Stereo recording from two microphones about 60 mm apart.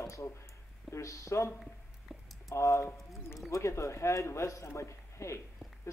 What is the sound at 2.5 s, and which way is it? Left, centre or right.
Speech, left.